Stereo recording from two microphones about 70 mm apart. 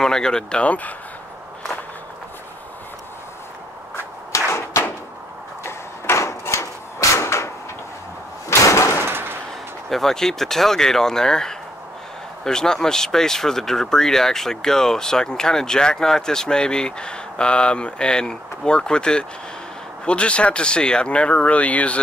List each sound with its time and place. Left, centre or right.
0.0 s speech: centre
4.5 s a sound: left
8.5 s slam: left
9.0 s door: right
9.8 s speech: centre